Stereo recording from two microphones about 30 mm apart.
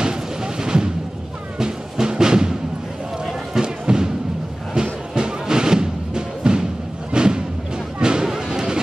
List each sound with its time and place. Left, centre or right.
0.0 s vehicle: right
1.6 s music: right
3.5 s music: right